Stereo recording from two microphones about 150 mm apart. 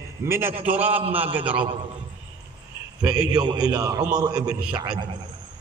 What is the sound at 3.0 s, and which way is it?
A man's voice, 30° right (ahead or behind).